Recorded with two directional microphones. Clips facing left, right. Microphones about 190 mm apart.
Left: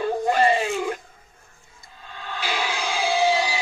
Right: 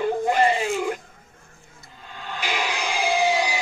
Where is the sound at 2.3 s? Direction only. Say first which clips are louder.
Even; 15° right (ahead or behind).